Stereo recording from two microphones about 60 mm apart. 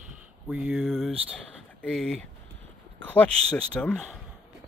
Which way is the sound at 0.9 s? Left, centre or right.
Centre.